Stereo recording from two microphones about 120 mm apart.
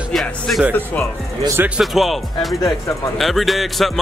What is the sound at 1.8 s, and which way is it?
Speech, centre (ahead or behind).